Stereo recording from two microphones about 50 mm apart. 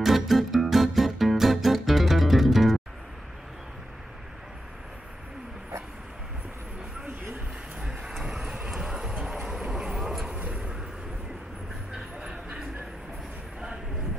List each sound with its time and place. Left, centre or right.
0.0 s music: centre
7.8 s vehicle: centre
10.2 s vehicle: right
11.9 s vehicle: right